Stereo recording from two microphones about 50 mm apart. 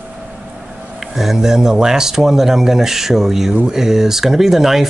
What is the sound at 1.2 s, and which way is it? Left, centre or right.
Speech, centre.